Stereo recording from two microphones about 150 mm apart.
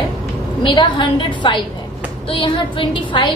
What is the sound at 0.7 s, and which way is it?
A woman's voice, 30° left (ahead or behind).